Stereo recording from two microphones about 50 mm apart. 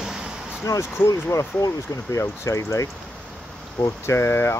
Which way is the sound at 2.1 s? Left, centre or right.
Left.